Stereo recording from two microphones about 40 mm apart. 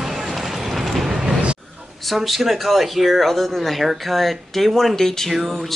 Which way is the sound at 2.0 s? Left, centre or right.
Centre.